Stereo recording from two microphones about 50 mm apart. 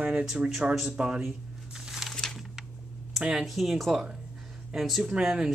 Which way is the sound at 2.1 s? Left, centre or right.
Centre.